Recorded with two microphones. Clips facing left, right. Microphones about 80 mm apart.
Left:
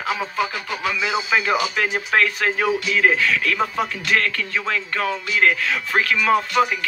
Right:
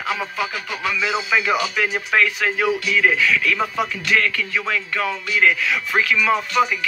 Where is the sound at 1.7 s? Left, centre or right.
Left.